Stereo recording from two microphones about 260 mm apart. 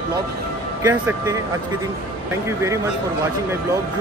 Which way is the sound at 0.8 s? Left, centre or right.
Centre.